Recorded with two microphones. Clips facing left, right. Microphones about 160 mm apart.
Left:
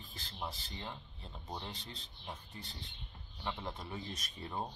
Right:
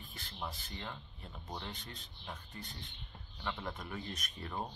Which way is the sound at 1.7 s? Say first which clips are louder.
Even; 30° left (ahead or behind).